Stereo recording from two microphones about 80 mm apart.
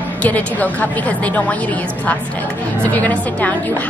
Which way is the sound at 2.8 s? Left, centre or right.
Centre.